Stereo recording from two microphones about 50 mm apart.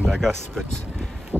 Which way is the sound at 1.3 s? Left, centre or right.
Right.